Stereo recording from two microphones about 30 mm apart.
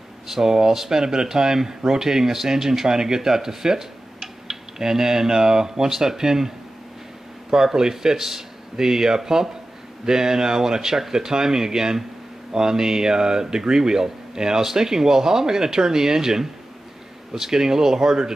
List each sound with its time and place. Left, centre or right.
0.3 s speech: centre
7.5 s speech: right